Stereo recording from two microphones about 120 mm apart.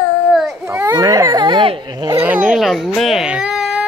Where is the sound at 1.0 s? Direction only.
25° right (ahead or behind).